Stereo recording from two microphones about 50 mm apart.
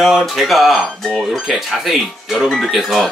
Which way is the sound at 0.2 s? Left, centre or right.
Centre.